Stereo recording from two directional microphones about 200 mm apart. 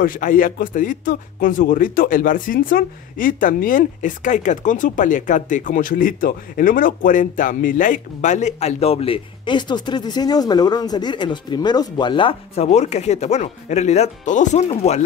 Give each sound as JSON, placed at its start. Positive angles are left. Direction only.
{"t": 0.0, "sound": "speech", "side_deg": 45}